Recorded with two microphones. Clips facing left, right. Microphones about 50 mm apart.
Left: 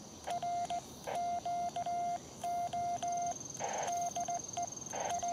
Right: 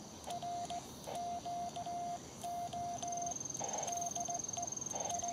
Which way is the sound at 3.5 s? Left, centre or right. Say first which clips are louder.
Left 5 dB; left.